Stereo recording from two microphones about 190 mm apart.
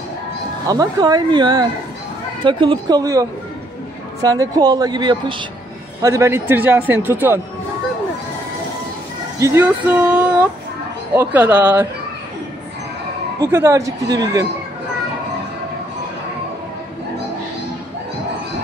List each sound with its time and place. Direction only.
0.7 s a man's voice: 20° right (ahead or behind)
9.4 s a man's voice: 10° right (ahead or behind)
13.4 s a man's voice: 15° right (ahead or behind)